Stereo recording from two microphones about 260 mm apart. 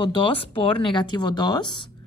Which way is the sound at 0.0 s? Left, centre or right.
Centre.